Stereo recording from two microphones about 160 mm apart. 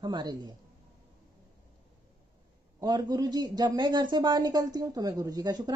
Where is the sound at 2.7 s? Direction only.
25° right (ahead or behind).